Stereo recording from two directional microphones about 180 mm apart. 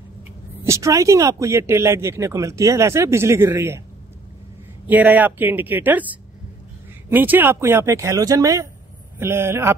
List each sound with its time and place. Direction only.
0.7 s speech: 15° right (ahead or behind)
4.8 s speech: 10° right (ahead or behind)